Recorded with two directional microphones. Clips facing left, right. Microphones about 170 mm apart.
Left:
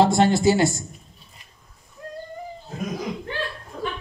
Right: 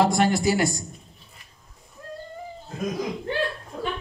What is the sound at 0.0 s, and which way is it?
Speech, 25° left (ahead or behind).